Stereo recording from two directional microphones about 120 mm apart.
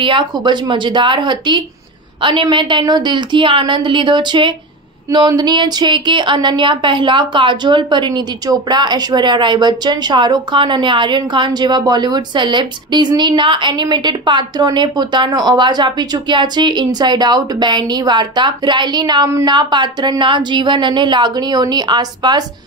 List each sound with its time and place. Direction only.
0.0 s speech: 40° right (ahead or behind)